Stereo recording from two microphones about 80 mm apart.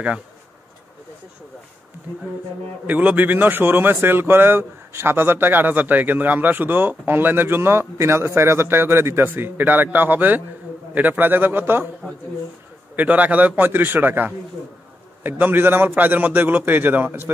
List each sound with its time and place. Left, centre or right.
2.9 s a man's voice: centre
12.9 s a man's voice: centre